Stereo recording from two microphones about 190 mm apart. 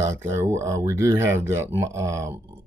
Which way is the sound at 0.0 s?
15° right (ahead or behind).